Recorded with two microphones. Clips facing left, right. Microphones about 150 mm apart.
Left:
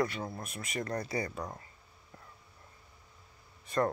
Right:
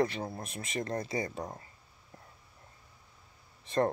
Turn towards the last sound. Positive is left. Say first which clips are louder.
# right 2 dB
turn(degrees=-30)  # may be behind; listen again after turning